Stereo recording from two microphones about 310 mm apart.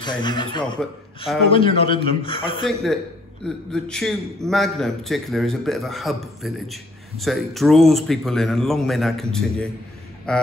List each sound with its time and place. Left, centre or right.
0.0 s a man's voice: centre
0.7 s a man's voice: centre
1.5 s a man's voice: centre
2.6 s a man's voice: centre